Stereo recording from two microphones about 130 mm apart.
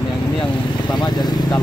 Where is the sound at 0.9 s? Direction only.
30° left (ahead or behind).